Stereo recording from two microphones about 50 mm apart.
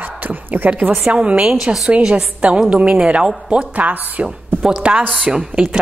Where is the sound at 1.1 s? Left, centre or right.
Right.